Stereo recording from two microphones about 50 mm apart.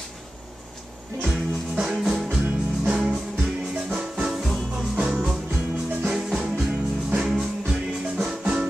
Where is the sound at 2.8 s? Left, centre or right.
Centre.